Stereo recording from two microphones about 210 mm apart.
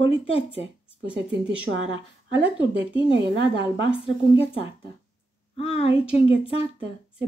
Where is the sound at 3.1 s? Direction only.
60° right (ahead or behind).